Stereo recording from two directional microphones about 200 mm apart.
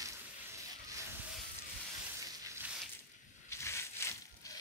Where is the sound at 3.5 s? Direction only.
15° left (ahead or behind).